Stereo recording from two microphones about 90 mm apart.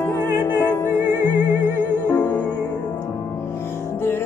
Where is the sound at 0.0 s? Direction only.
25° left (ahead or behind).